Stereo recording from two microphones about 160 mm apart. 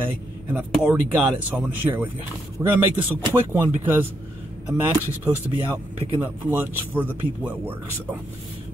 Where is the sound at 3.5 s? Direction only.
10° right (ahead or behind).